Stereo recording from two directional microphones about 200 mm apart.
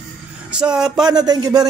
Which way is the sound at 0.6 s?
5° right (ahead or behind).